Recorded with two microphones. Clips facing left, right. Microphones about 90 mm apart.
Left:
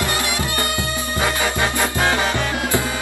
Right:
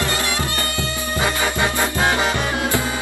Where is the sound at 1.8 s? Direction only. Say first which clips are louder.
Even; 20° right (ahead or behind).